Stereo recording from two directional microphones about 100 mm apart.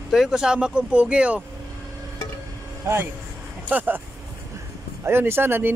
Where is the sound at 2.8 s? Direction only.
25° right (ahead or behind).